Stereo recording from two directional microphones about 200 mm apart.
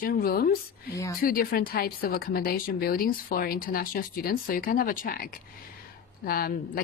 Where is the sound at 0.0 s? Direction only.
45° left (ahead or behind).